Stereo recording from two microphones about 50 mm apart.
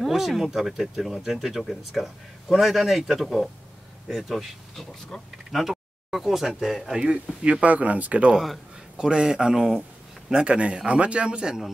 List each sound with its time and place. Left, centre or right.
0.0 s speech: centre
7.6 s speech: right
8.3 s speech: centre
8.9 s speech: centre